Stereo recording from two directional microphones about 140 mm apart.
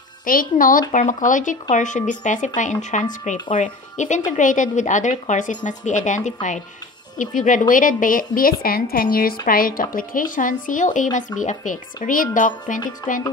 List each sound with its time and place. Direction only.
0.2 s speech: 85° left
0.9 s speech: 65° left (ahead or behind); by 10.2 s 85° left
10.3 s speech: 70° left (ahead or behind)